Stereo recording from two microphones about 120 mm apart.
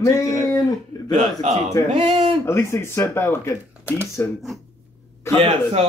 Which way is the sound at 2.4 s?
20° left (ahead or behind).